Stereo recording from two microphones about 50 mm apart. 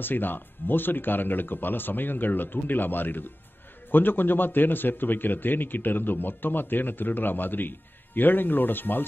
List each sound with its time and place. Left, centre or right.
0.0 s a man's voice: left